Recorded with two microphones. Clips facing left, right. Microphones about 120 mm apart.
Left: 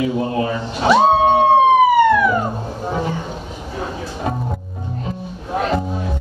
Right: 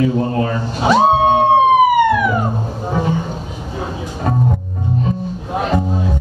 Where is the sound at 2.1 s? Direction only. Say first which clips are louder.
Even; 10° right (ahead or behind).